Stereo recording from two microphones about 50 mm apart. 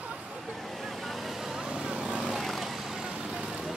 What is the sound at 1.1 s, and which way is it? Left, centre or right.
Vehicle, centre.